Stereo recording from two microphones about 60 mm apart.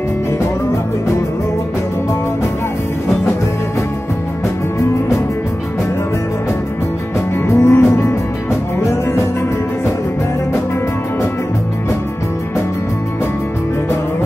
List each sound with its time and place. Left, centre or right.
7.4 s music: left